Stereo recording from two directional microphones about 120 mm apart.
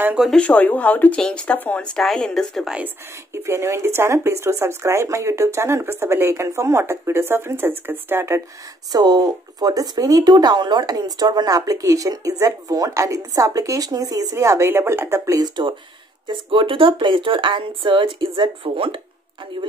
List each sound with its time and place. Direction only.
0.2 s speech: 5° left (ahead or behind)
3.4 s speech: 20° right (ahead or behind)
8.9 s speech: 35° right (ahead or behind)
16.3 s speech: 45° right (ahead or behind)